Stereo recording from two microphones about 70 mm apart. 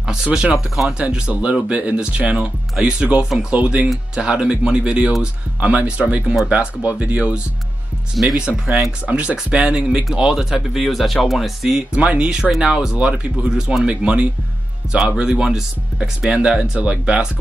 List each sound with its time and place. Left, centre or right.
0.0 s speech: centre
8.2 s speech: centre
8.7 s speech: right